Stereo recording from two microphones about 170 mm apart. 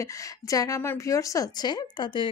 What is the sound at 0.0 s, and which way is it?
Speech, 20° left (ahead or behind).